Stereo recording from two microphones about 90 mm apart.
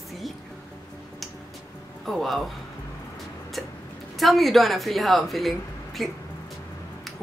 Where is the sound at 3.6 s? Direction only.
Centre (ahead or behind).